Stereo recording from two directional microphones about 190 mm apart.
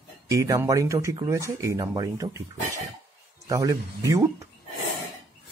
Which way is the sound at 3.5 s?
15° right (ahead or behind).